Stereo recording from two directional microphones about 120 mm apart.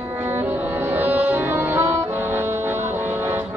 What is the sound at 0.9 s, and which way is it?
Music, 15° right (ahead or behind).